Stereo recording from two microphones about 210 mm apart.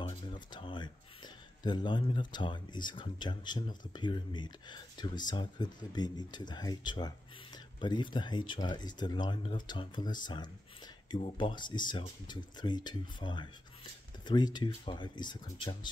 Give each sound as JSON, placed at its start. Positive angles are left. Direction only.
{"t": 0.0, "sound": "speech", "side_deg": 20}